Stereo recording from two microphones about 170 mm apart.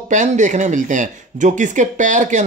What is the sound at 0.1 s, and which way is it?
Speech, 45° right (ahead or behind).